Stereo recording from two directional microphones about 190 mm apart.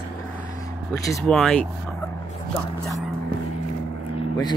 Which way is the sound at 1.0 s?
5° left (ahead or behind).